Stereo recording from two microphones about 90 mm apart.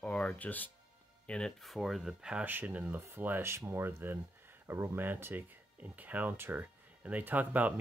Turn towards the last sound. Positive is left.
turn(degrees=-20)  # may be behind; listen again after turning